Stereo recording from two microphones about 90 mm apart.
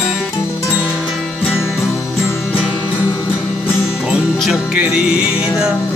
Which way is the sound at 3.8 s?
5° right (ahead or behind).